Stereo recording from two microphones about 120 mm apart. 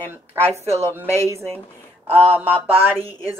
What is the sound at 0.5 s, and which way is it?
Speech, 20° right (ahead or behind).